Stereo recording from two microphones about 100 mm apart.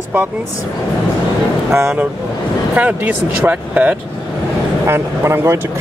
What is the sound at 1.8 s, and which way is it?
Speech, 25° right (ahead or behind).